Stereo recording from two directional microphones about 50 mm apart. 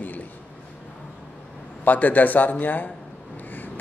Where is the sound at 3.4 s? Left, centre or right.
Left.